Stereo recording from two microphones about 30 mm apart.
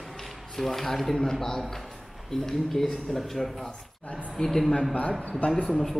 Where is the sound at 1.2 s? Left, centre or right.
Centre.